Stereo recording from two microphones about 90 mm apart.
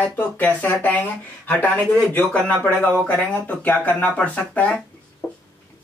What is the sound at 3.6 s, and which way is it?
Speech, 20° left (ahead or behind).